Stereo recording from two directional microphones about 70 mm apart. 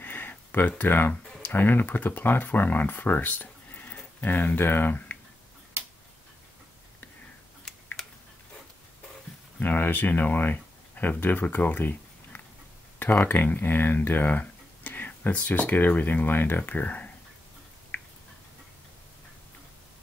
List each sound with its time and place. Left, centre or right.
0.0 s speech: left
7.6 s typing: centre
9.6 s speech: left
17.9 s a sound: left